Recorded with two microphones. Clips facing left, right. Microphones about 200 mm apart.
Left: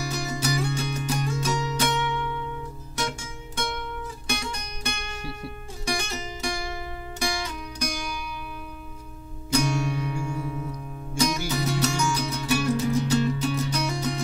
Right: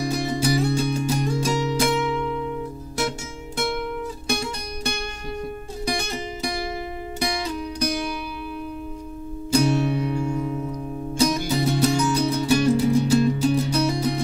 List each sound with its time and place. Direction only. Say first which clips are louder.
0.1 s music: right 6 dB; 30° right (ahead or behind)
4.3 s music: right 4 dB; 35° right (ahead or behind)
9.5 s music: right 5 dB; 30° right (ahead or behind)